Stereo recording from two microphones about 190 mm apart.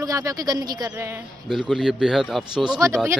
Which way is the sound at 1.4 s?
Centre (ahead or behind).